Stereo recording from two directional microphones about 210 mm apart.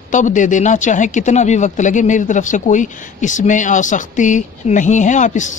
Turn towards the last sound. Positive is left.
turn(degrees=35)  # may be behind; listen again after turning